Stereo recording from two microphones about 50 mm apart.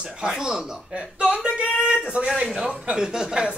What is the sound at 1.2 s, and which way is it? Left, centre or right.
Speech, right.